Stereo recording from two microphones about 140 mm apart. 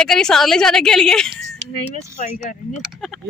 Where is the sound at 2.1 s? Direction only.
50° left (ahead or behind).